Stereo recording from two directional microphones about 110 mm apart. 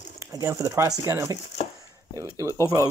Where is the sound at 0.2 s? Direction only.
30° right (ahead or behind).